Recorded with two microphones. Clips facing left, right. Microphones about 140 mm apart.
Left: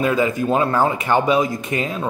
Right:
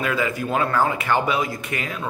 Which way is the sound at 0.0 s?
25° left (ahead or behind).